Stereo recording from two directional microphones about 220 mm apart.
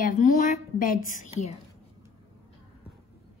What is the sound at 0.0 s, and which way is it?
A woman's voice, 35° left (ahead or behind).